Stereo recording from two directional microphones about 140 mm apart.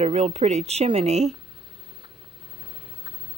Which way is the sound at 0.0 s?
50° right (ahead or behind).